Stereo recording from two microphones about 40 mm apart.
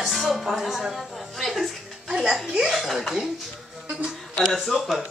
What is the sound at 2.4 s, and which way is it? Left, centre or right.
Speech, centre.